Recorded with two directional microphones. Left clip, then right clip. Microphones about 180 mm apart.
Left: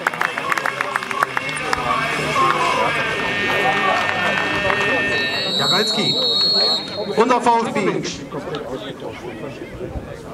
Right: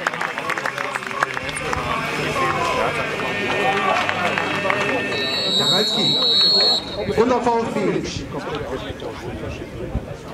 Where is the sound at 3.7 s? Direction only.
Centre (ahead or behind).